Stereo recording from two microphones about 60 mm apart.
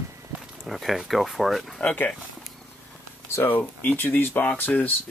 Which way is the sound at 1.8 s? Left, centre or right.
Left.